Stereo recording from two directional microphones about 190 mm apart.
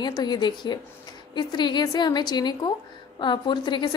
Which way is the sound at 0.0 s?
20° left (ahead or behind).